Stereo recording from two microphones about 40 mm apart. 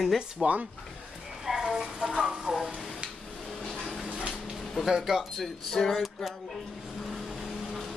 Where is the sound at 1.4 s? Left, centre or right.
Centre.